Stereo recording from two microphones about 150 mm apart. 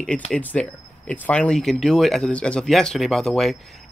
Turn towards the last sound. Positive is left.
turn(degrees=0)  # may be behind; listen again after turning